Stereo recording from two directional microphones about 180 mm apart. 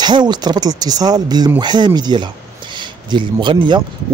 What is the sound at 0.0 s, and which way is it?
Speech, 25° right (ahead or behind).